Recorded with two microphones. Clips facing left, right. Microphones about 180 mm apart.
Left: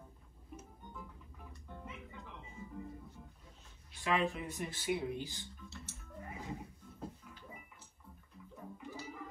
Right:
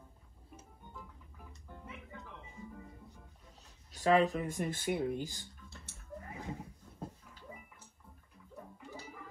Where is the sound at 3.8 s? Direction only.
40° right (ahead or behind).